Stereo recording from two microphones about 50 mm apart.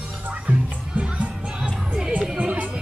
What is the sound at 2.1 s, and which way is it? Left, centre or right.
Music, right.